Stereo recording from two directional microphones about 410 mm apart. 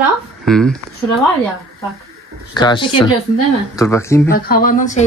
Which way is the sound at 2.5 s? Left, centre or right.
Centre.